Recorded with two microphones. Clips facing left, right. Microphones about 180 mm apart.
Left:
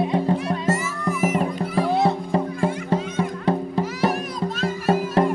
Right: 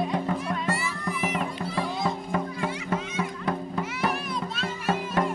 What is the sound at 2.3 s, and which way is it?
Music, 30° left (ahead or behind).